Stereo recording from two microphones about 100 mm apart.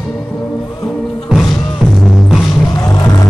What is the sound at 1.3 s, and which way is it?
Music, 5° right (ahead or behind).